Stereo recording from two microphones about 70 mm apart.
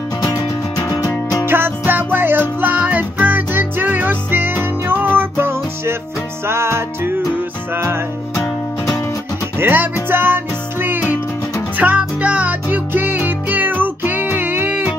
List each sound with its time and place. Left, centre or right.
0.2 s music: left
1.4 s music: right
9.6 s music: right